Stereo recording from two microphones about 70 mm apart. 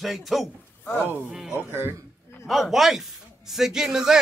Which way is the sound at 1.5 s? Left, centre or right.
Right.